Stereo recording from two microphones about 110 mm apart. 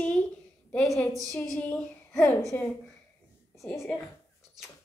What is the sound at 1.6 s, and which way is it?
A woman's voice, 10° left (ahead or behind).